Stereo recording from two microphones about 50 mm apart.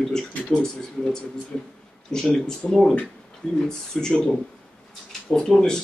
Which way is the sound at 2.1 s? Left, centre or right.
Centre.